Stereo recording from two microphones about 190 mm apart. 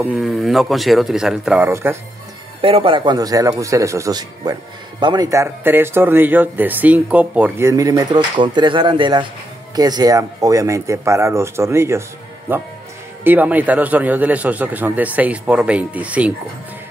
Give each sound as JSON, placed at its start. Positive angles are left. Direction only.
{"t": 0.0, "sound": "a man's voice", "side_deg": 0}
{"t": 2.6, "sound": "a man's voice", "side_deg": -30}
{"t": 13.2, "sound": "speech", "side_deg": -10}